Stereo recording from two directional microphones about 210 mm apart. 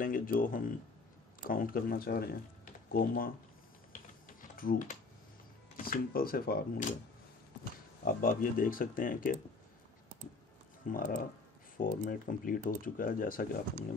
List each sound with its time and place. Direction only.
0.0 s speech: 40° left (ahead or behind)
4.4 s typing: 40° left (ahead or behind)
5.8 s speech: 45° left (ahead or behind)
8.0 s speech: 40° left (ahead or behind)
10.9 s speech: 40° left (ahead or behind)